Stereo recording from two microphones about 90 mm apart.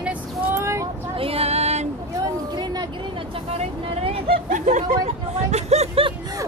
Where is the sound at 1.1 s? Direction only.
90° right.